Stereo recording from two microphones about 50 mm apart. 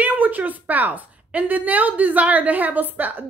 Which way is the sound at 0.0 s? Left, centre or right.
Right.